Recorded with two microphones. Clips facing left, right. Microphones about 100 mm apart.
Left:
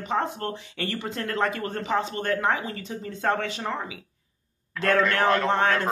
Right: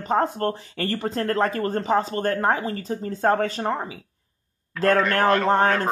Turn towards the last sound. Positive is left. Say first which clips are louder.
# right 3 dB
turn(degrees=-40)  # may be behind; listen again after turning